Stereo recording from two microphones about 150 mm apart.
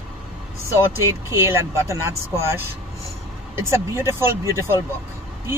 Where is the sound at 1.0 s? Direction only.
20° right (ahead or behind).